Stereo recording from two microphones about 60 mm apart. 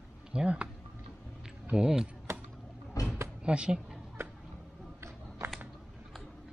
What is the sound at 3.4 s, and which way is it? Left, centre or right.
Speech, centre.